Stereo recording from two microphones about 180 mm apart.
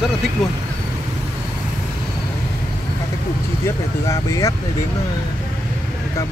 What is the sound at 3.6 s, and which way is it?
Speech, 15° left (ahead or behind).